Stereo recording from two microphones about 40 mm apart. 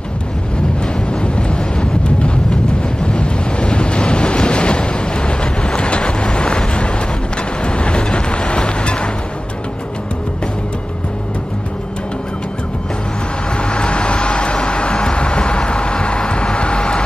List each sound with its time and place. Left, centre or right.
1.2 s a sound: left
7.6 s vehicle: left
13.6 s vehicle: left